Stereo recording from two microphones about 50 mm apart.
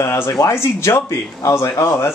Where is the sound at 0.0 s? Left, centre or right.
Left.